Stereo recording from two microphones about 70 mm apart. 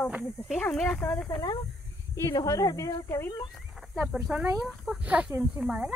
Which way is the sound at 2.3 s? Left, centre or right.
Left.